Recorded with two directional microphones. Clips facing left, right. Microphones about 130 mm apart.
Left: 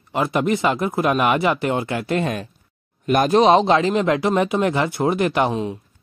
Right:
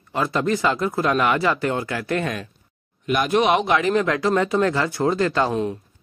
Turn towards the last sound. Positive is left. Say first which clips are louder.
# right 1 dB
turn(degrees=5)  # may be behind; listen again after turning